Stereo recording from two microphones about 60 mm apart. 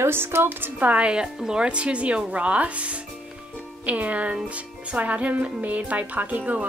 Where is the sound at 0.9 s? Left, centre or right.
Centre.